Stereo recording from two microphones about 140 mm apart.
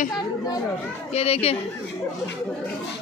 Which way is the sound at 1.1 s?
45° left (ahead or behind).